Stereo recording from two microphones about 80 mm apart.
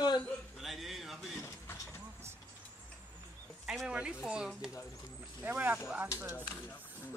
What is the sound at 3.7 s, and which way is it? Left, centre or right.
Speech, centre.